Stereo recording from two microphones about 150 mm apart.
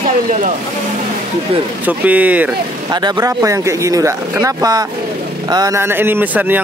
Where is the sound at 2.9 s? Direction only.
25° right (ahead or behind).